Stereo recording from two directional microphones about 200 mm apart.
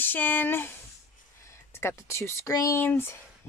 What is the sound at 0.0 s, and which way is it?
Speech, 10° left (ahead or behind).